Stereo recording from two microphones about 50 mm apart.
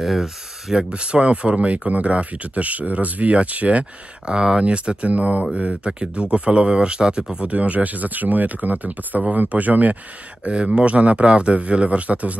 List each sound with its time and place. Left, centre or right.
0.0 s speech: centre
0.7 s speech: centre
7.5 s speech: right
10.4 s speech: right